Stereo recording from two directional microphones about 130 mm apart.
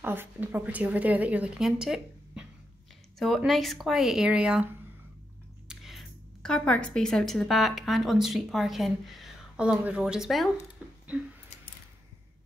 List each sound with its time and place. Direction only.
0.0 s a woman's voice: 15° right (ahead or behind)
5.7 s a woman's voice: centre (ahead or behind)